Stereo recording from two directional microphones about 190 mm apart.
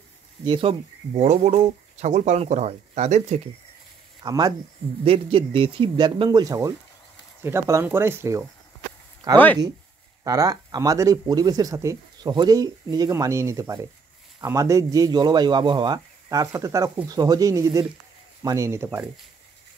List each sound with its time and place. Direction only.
0.5 s speech: 30° right (ahead or behind)
4.2 s speech: 20° right (ahead or behind)